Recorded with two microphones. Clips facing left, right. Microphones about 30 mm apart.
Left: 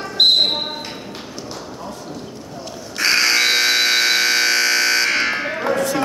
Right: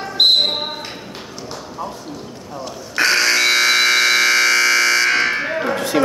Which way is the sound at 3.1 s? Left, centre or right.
Centre.